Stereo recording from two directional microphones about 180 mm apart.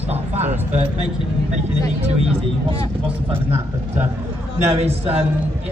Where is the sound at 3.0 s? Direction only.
10° right (ahead or behind).